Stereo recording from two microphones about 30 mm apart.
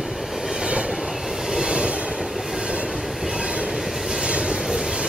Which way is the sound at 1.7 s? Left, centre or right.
Right.